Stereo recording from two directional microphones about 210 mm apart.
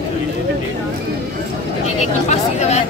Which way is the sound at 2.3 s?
30° left (ahead or behind).